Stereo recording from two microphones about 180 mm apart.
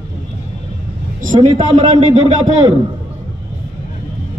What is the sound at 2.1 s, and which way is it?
Speech, 35° right (ahead or behind).